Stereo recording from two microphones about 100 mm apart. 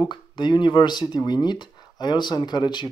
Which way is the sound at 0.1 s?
50° left (ahead or behind).